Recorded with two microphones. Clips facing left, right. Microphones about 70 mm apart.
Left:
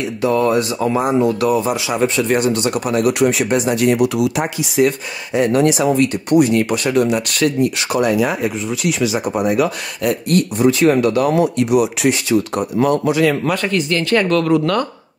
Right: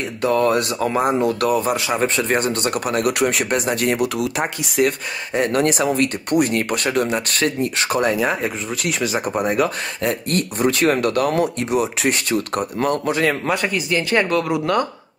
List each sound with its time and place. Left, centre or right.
0.2 s speech: right
11.3 s speech: right
12.1 s speech: right
13.5 s speech: centre